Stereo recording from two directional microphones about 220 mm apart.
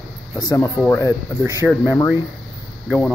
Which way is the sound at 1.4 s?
15° right (ahead or behind).